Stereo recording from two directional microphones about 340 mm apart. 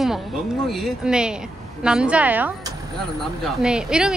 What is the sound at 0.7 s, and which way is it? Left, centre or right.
Speech, centre.